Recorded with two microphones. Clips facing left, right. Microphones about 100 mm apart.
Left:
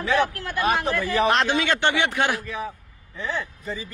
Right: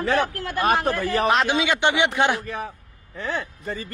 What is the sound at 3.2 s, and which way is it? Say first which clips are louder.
Speech: right 1 dB; 55° right (ahead or behind).